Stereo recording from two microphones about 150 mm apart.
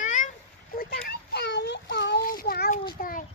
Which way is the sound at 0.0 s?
55° left (ahead or behind).